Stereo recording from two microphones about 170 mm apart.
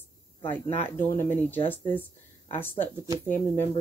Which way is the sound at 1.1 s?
15° left (ahead or behind).